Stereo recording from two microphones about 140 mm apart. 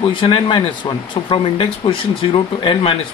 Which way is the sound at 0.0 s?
35° left (ahead or behind).